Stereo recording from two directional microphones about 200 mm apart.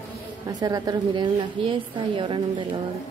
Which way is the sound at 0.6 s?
20° right (ahead or behind).